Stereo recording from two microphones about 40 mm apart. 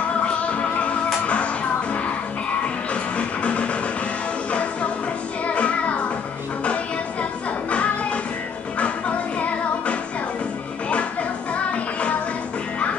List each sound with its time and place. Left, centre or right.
0.2 s music: left
7.7 s music: left
11.5 s music: left